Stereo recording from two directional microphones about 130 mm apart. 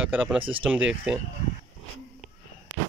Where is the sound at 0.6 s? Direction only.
10° right (ahead or behind).